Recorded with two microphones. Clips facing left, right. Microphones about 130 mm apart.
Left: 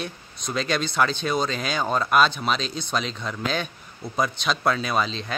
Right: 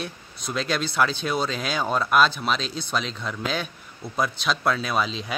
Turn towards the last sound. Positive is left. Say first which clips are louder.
# even
turn(degrees=-5)  # may be behind; listen again after turning